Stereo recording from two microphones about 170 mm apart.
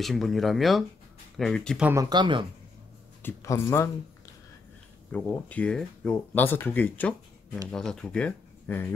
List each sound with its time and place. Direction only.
0.0 s speech: centre (ahead or behind)
1.8 s speech: 10° right (ahead or behind)
2.0 s speech: 30° right (ahead or behind)
3.2 s speech: 15° left (ahead or behind)
5.1 s speech: 10° left (ahead or behind)